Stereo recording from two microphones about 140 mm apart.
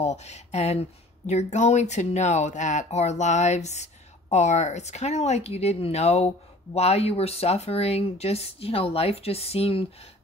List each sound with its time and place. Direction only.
0.0 s speech: 50° left (ahead or behind)